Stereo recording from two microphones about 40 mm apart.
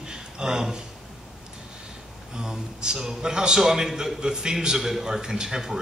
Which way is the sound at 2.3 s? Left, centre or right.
Centre.